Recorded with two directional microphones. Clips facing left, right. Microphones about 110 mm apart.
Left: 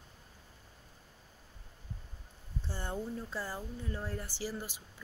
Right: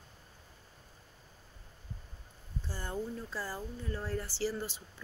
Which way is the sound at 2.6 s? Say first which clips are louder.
Even; 25° left (ahead or behind).